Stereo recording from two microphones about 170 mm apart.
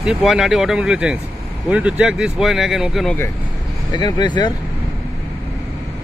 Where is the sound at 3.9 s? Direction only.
25° left (ahead or behind).